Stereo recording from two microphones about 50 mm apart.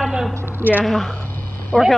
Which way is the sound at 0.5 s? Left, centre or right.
Right.